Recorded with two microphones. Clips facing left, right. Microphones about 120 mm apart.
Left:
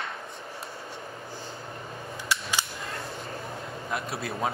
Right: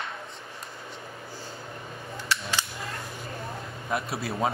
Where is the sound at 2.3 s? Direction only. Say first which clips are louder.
Even; 15° left (ahead or behind).